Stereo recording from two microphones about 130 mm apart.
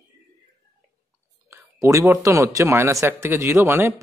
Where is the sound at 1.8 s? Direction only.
25° right (ahead or behind).